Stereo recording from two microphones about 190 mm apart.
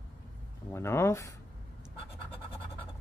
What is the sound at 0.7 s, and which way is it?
Speech, 15° left (ahead or behind).